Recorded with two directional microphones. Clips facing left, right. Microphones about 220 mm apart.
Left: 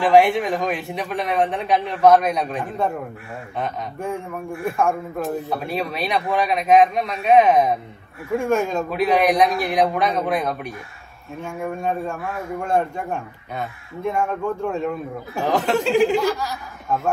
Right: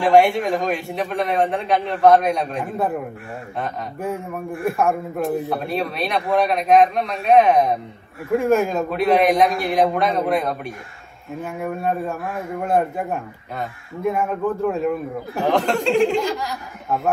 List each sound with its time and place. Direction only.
0.0 s a man's voice: centre (ahead or behind)